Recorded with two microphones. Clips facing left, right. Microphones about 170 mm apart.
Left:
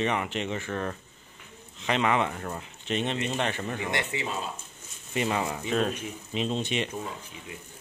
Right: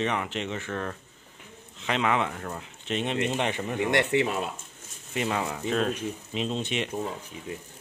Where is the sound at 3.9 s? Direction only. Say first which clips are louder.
Right 11 dB; 70° right (ahead or behind).